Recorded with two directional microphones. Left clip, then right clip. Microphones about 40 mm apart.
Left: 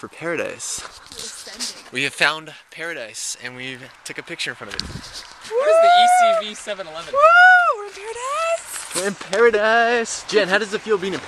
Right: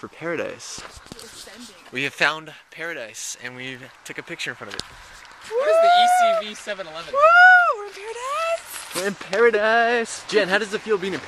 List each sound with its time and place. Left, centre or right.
0.0 s speech: centre
2.0 s speech: centre
5.5 s a sound: centre
5.9 s speech: centre
6.6 s speech: right
7.0 s speech: centre
8.0 s a sound: centre
9.5 s speech: left
10.0 s speech: left